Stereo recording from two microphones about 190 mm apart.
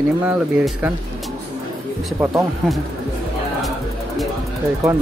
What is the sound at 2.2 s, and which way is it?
Speech, 5° right (ahead or behind).